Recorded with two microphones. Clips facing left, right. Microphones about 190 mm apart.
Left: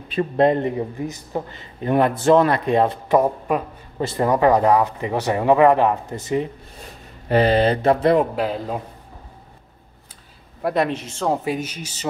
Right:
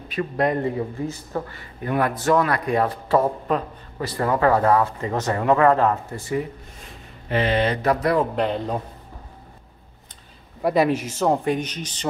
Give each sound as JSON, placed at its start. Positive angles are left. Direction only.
{"t": 0.1, "sound": "a man's voice", "side_deg": 30}
{"t": 6.8, "sound": "speech", "side_deg": 40}
{"t": 8.4, "sound": "a man's voice", "side_deg": 5}
{"t": 10.6, "sound": "a man's voice", "side_deg": 0}
{"t": 11.4, "sound": "speech", "side_deg": 5}